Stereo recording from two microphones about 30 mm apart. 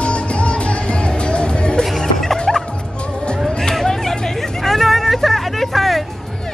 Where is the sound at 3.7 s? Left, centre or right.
Centre.